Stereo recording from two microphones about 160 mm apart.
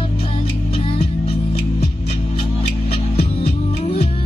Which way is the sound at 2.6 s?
40° left (ahead or behind).